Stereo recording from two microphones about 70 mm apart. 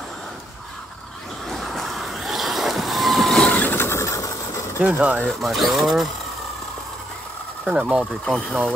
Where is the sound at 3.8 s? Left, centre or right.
Left.